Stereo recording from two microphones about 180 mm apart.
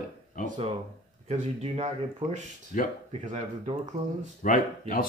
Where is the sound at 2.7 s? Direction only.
45° left (ahead or behind).